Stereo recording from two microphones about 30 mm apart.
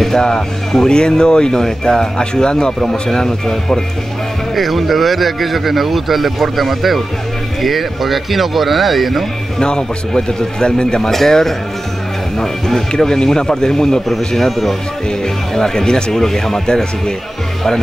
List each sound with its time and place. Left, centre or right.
0.2 s a man's voice: left
2.8 s a man's voice: centre
4.6 s speech: centre
9.6 s a man's voice: left
11.1 s a man's voice: centre
12.9 s a man's voice: left
14.0 s speech: centre
15.0 s a man's voice: left